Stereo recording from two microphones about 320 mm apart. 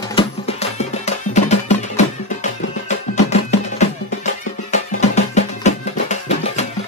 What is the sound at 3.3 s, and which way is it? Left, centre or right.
Music, left.